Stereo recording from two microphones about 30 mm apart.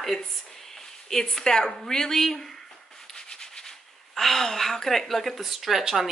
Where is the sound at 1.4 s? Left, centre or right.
Left.